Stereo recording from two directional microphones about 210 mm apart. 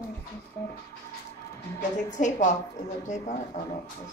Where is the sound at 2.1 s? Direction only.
35° left (ahead or behind).